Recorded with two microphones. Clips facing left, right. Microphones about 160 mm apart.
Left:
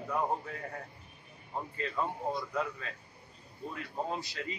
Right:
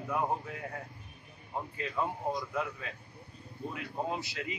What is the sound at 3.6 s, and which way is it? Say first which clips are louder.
Speech: right 1 dB; 15° right (ahead or behind).